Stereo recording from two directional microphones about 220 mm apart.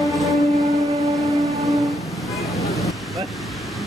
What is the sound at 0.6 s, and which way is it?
Train, 15° right (ahead or behind).